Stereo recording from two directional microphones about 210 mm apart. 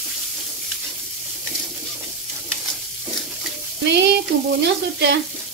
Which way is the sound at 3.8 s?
55° right (ahead or behind).